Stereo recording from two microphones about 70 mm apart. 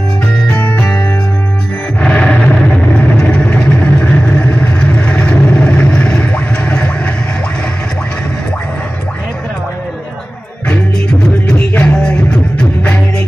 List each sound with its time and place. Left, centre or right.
0.5 s music: left
2.0 s music: centre
3.2 s vehicle: centre
6.3 s a sound: centre
10.7 s music: centre
11.5 s music: left
11.9 s music: centre